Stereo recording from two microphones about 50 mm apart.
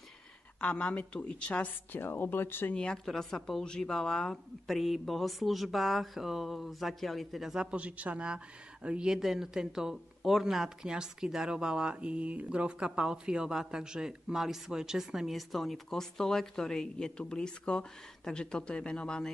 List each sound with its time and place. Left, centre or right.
0.6 s a woman's voice: left
1.9 s speech: left
2.7 s a woman's voice: centre
7.7 s speech: right
9.1 s speech: centre